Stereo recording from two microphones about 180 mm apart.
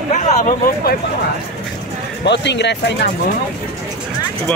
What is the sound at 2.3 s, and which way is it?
Speech, 75° left (ahead or behind).